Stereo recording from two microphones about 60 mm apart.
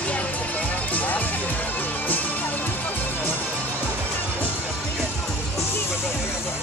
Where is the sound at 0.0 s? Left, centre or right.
Left.